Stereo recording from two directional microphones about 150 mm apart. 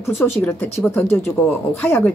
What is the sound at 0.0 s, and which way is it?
Speech, 15° left (ahead or behind).